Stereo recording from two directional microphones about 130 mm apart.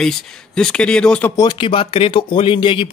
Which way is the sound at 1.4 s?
35° left (ahead or behind).